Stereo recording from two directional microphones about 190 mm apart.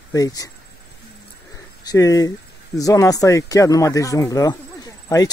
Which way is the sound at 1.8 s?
15° left (ahead or behind).